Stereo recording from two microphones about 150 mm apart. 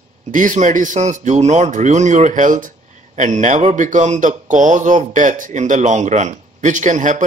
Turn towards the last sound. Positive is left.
turn(degrees=-55)  # may be behind; listen again after turning